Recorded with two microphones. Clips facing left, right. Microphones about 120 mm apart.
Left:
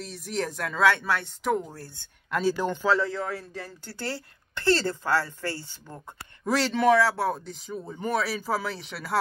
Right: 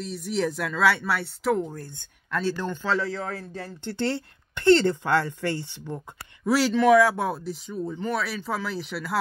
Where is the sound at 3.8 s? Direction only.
25° right (ahead or behind).